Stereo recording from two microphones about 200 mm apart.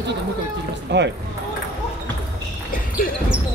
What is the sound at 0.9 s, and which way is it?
Speech, 60° right (ahead or behind).